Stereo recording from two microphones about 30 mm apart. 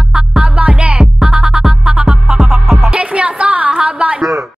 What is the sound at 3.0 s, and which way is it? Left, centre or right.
Music, right.